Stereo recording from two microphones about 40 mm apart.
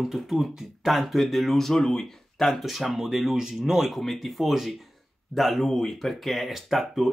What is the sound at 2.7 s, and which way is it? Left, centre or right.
Speech, centre.